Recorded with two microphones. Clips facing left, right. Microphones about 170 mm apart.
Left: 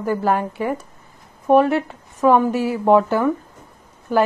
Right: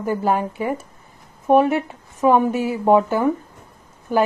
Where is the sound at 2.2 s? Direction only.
15° right (ahead or behind).